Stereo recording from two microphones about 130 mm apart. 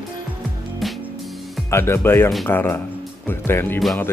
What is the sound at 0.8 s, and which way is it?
Music, centre (ahead or behind).